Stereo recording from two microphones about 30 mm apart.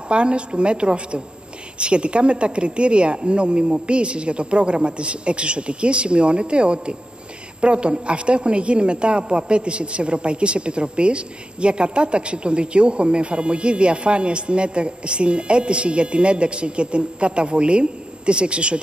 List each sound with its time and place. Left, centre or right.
0.1 s a woman's voice: right